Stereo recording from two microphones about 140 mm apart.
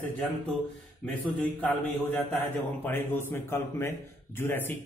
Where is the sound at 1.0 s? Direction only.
10° left (ahead or behind).